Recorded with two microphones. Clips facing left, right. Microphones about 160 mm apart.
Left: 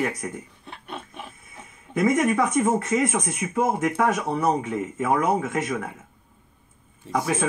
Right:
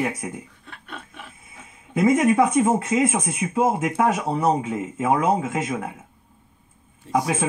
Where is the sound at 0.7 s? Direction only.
25° left (ahead or behind).